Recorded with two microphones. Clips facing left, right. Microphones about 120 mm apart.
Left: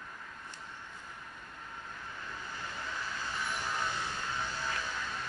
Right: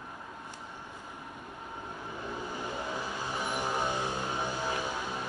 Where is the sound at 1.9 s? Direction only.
20° right (ahead or behind).